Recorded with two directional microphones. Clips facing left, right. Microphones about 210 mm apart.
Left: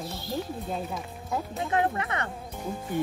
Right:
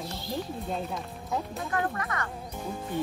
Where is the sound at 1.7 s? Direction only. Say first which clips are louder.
Left 4 dB; 25° left (ahead or behind).